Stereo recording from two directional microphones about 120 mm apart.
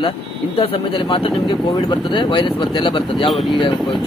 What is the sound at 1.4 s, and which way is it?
Speech, 35° left (ahead or behind).